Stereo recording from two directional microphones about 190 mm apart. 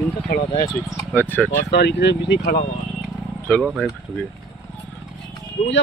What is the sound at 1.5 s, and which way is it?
Speech, 60° left (ahead or behind).